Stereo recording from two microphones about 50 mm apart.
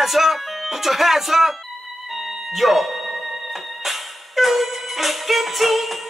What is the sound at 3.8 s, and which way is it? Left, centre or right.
Music, centre.